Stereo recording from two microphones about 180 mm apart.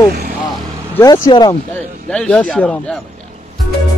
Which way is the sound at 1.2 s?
20° left (ahead or behind).